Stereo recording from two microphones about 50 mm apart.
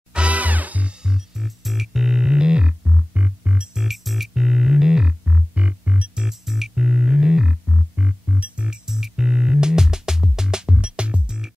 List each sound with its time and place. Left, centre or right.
0.1 s music: right
1.0 s music: centre
3.2 s music: right
3.5 s music: centre; by 6.0 s right
6.1 s music: centre
7.9 s music: right
8.6 s music: centre